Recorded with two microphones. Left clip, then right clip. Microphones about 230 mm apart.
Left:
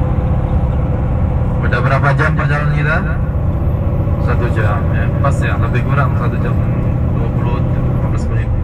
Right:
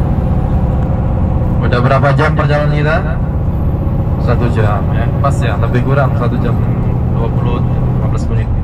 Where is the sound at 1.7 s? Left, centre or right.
Right.